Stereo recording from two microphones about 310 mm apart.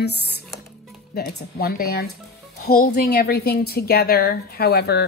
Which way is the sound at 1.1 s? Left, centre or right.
Left.